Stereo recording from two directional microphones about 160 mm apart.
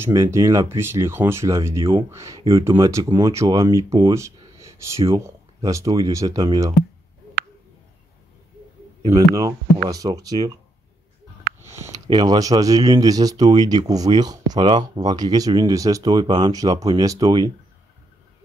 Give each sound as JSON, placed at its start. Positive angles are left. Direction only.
{"t": 0.0, "sound": "speech", "side_deg": -20}
{"t": 9.1, "sound": "speech", "side_deg": -20}
{"t": 11.6, "sound": "speech", "side_deg": -15}